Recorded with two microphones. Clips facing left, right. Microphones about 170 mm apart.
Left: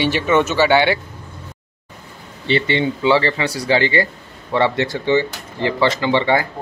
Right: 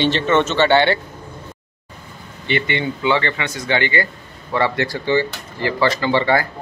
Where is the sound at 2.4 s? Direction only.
30° left (ahead or behind).